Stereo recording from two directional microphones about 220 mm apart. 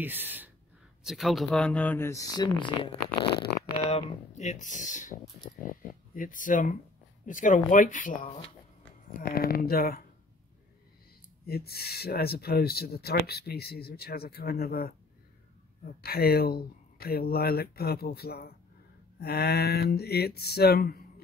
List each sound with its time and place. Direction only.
0.0 s speech: 10° right (ahead or behind); by 10.0 s 45° left (ahead or behind)
11.4 s speech: 45° left (ahead or behind)